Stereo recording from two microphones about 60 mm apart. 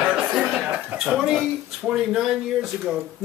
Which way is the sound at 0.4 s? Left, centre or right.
Centre.